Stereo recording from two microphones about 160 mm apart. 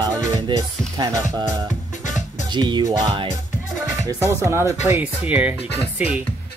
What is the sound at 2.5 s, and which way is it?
Music, 30° right (ahead or behind).